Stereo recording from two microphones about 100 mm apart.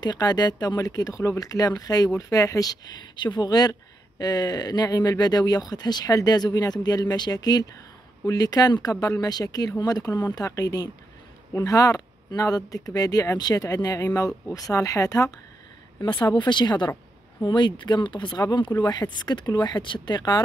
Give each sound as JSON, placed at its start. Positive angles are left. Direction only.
{"t": 0.0, "sound": "speech", "side_deg": 45}
{"t": 16.0, "sound": "speech", "side_deg": 55}